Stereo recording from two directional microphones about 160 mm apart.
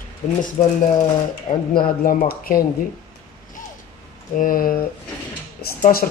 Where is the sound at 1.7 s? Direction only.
65° left (ahead or behind).